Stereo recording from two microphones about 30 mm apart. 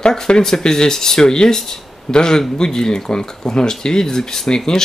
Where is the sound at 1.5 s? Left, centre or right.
Centre.